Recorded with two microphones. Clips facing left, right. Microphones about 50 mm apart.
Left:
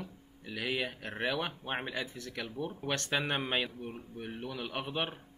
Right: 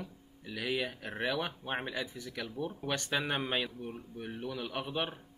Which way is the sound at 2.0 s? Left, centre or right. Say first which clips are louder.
Even; centre.